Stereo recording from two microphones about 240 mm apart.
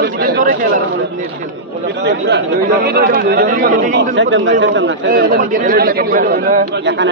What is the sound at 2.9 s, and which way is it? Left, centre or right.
Speech, right.